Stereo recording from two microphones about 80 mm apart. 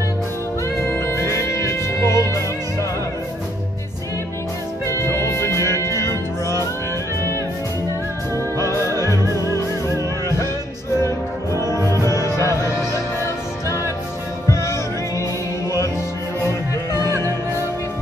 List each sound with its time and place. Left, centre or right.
0.8 s music: left
4.8 s music: left
5.8 s music: right
6.0 s music: left
8.5 s music: left
9.2 s music: right
11.0 s music: left
14.5 s music: left
16.4 s music: left